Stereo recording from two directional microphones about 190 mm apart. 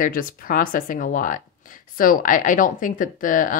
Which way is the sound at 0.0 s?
45° left (ahead or behind).